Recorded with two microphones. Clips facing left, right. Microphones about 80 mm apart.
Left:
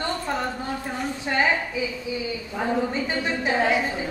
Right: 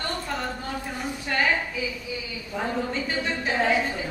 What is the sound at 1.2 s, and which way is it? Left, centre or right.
Speech, left.